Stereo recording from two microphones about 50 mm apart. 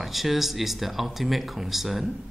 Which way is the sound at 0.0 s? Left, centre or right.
Centre.